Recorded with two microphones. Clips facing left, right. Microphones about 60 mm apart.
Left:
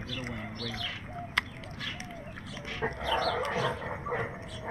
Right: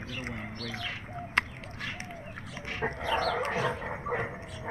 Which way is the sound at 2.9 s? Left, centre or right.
Right.